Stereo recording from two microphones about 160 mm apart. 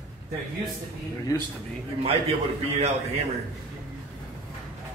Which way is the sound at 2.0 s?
40° right (ahead or behind).